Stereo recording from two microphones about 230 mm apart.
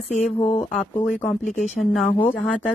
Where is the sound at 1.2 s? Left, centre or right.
Centre.